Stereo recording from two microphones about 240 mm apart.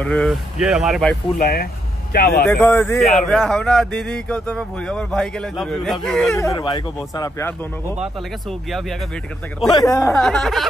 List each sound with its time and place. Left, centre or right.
0.0 s speech: centre
1.4 s speech: left
2.4 s speech: centre
6.3 s speech: centre
8.0 s speech: centre
9.7 s speech: centre
10.1 s speech: centre